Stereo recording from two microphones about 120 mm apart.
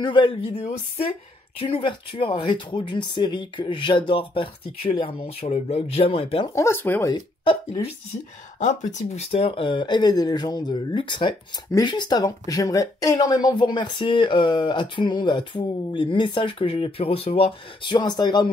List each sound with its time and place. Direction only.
0.0 s speech: 45° left (ahead or behind)
5.5 s speech: 60° left (ahead or behind)
6.5 s speech: 20° left (ahead or behind)
7.1 s speech: 35° left (ahead or behind)
8.5 s speech: 80° left; by 18.5 s 35° left (ahead or behind)